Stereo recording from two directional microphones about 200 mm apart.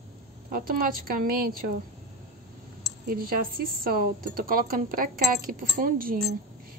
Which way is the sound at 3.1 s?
50° right (ahead or behind).